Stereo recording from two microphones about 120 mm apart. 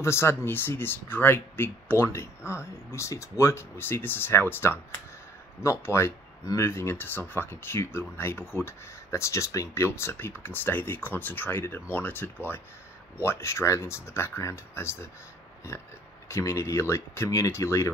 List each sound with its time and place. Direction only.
0.0 s speech: 20° left (ahead or behind)
16.3 s speech: 25° left (ahead or behind)